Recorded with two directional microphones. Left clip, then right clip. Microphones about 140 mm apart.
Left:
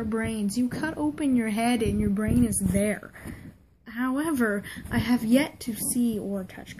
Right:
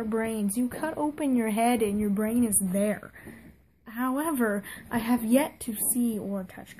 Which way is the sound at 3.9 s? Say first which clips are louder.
Left 1 dB; 30° right (ahead or behind).